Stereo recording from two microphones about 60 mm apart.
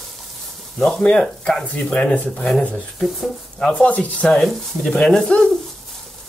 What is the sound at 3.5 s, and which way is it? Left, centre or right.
Speech, centre.